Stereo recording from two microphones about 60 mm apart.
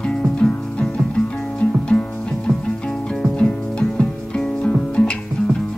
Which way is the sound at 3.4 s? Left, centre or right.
Centre.